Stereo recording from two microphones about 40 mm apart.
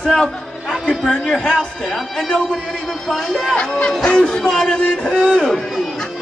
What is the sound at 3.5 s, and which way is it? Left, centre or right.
A man's voice, left.